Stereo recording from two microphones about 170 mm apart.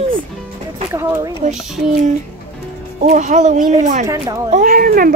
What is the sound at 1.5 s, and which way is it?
Speech, 5° right (ahead or behind).